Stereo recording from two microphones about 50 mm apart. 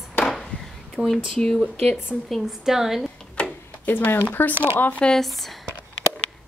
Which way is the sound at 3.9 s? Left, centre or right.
Left.